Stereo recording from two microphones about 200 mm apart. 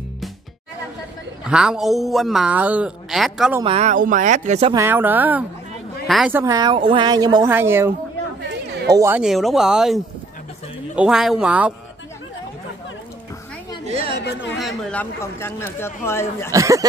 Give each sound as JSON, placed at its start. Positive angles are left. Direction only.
{"t": 1.4, "sound": "a man's voice", "side_deg": -5}
{"t": 3.6, "sound": "speech", "side_deg": -35}
{"t": 4.7, "sound": "speech", "side_deg": -10}
{"t": 6.3, "sound": "speech", "side_deg": -15}
{"t": 8.5, "sound": "chatter", "side_deg": -55}
{"t": 8.9, "sound": "speech", "side_deg": -15}
{"t": 9.2, "sound": "a man's voice", "side_deg": 0}
{"t": 13.8, "sound": "chatter", "side_deg": -30}
{"t": 14.1, "sound": "chatter", "side_deg": 60}
{"t": 14.6, "sound": "speech", "side_deg": 0}
{"t": 16.5, "sound": "speech", "side_deg": -15}